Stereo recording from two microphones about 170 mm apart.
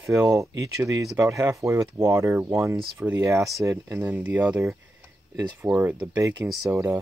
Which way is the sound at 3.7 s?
15° right (ahead or behind).